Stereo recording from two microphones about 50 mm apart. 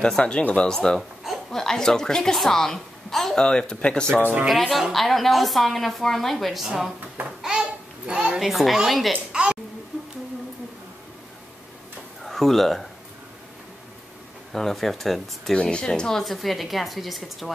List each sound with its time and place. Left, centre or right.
0.0 s speech: centre
0.4 s speech: left
0.7 s speech: centre
3.4 s speech: centre
4.5 s a woman's voice: centre
7.2 s babbling: centre
8.1 s a sound: centre
8.4 s a woman's voice: centre
9.1 s a sound: right
12.2 s speech: centre
14.5 s a woman's voice: centre
15.5 s a woman's voice: centre